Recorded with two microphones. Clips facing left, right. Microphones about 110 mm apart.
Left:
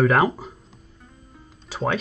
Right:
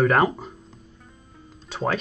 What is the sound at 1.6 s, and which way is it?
Music, centre (ahead or behind).